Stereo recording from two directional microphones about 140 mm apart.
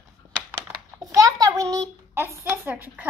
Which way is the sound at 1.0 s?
25° right (ahead or behind).